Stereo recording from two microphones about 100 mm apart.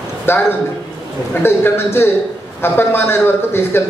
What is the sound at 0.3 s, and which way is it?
A man's voice, 25° left (ahead or behind).